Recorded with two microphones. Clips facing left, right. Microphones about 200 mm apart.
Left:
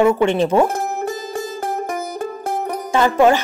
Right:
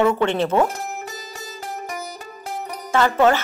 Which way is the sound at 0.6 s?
50° left (ahead or behind).